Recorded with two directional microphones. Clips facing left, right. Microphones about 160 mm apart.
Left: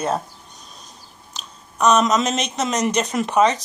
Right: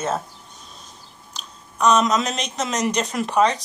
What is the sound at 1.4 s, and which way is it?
Speech, centre (ahead or behind).